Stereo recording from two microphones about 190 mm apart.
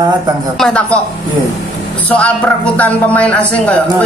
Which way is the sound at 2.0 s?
5° left (ahead or behind).